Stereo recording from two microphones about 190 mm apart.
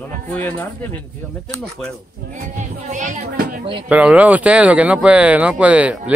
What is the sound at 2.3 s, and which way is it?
Speech, 40° right (ahead or behind).